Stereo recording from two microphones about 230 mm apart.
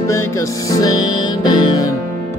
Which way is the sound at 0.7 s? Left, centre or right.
Centre.